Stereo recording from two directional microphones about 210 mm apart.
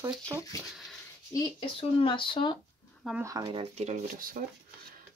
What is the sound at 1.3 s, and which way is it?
Speech, 20° left (ahead or behind).